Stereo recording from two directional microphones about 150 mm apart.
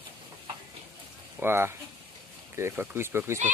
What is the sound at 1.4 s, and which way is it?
Speech, 15° right (ahead or behind).